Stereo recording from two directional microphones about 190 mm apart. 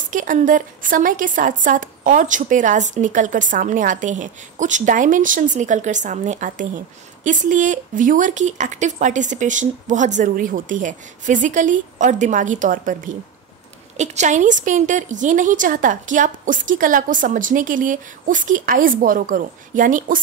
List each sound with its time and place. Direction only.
0.1 s speech: 45° right (ahead or behind)